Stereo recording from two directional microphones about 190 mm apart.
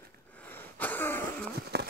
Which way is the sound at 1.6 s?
60° right (ahead or behind).